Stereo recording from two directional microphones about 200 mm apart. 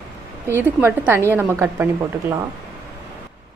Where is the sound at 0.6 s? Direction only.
10° right (ahead or behind).